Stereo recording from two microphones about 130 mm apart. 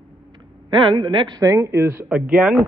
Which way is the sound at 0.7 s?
40° right (ahead or behind).